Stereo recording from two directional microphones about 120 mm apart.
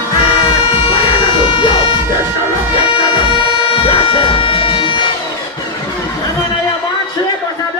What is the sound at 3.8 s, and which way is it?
Music, 45° left (ahead or behind).